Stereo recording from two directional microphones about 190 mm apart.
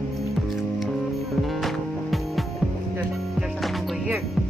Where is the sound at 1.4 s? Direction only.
Centre (ahead or behind).